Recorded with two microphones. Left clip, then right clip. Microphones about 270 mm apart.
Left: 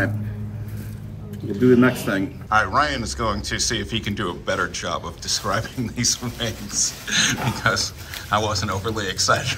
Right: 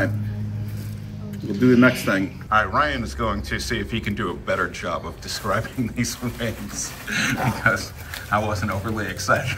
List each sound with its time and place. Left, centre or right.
1.5 s a man's voice: centre